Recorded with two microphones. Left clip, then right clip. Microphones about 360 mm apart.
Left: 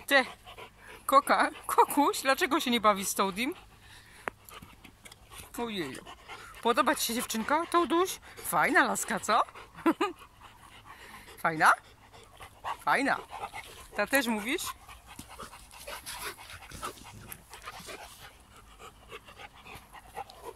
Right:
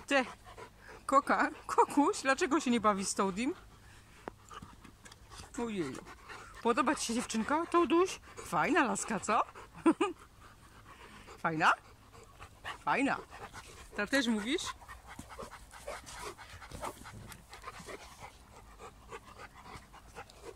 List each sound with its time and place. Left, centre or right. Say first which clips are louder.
0.0 s speech: left 6 dB; centre
5.4 s speech: left 3 dB; centre
11.2 s speech: left 5 dB; centre
12.8 s speech: left 4 dB; centre
15.4 s dog: even; right
19.0 s dog: left 3 dB; centre